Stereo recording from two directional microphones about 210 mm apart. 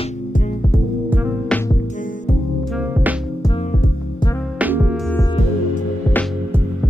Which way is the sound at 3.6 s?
35° left (ahead or behind).